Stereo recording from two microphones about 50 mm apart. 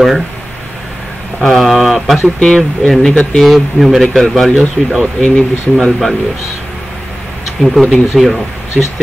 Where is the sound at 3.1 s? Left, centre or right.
Left.